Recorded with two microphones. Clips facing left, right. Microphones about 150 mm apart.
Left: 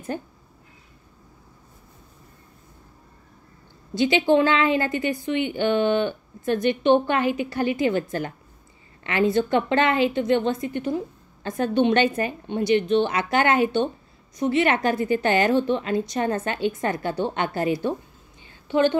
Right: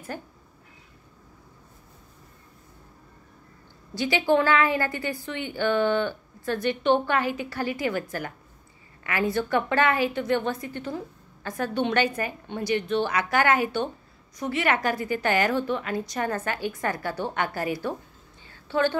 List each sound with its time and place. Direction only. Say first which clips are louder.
0.1 s a woman's voice: left 5 dB; 20° left (ahead or behind)
3.9 s a woman's voice: left 4 dB; 20° left (ahead or behind)